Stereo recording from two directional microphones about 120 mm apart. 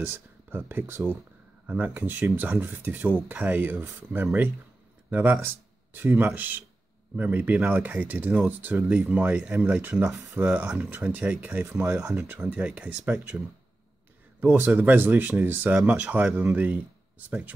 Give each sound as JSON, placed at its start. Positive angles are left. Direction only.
{"t": 0.0, "sound": "speech", "side_deg": -15}
{"t": 14.4, "sound": "speech", "side_deg": -15}